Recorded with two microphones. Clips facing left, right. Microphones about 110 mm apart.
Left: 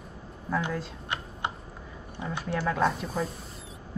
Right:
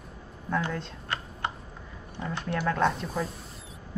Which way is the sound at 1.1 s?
15° left (ahead or behind).